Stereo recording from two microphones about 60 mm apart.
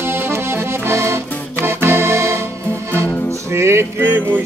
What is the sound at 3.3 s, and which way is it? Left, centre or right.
Music, right.